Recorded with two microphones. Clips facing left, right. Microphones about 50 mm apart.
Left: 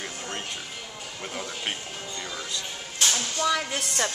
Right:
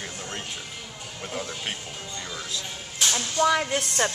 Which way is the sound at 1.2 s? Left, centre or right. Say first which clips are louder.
Right 1 dB; centre.